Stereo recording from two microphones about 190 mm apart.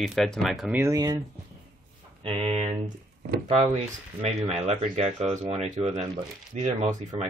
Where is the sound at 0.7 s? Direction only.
15° right (ahead or behind).